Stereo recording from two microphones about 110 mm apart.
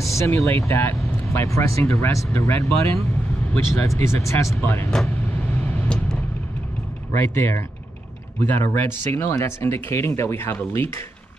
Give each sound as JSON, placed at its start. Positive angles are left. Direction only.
{"t": 0.0, "sound": "speech", "side_deg": 25}
{"t": 5.0, "sound": "vehicle", "side_deg": 15}
{"t": 7.2, "sound": "speech", "side_deg": 25}